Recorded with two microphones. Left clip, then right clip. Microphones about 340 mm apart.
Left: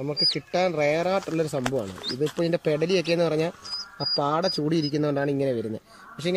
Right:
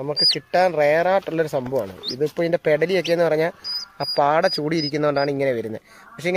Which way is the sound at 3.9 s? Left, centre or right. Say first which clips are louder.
Right 6 dB; right.